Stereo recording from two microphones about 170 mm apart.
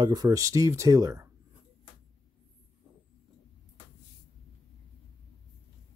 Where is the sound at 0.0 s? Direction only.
20° right (ahead or behind).